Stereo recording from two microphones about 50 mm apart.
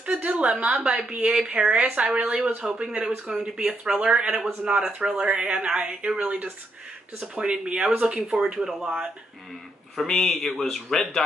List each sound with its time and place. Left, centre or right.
0.0 s speech: right
2.6 s speech: centre
9.9 s speech: centre